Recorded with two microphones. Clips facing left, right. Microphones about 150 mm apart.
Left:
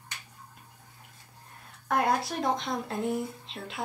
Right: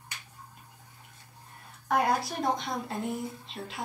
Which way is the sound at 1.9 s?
Centre (ahead or behind).